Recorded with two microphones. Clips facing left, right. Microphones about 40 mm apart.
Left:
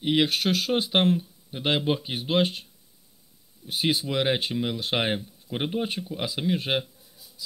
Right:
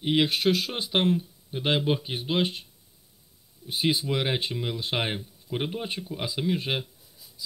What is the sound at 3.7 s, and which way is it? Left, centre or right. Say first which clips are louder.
Speech: left 1 dB; left.